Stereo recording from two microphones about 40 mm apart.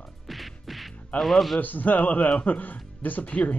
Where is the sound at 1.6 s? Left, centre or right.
Left.